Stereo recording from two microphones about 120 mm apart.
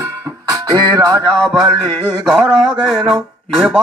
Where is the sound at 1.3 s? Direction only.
5° left (ahead or behind).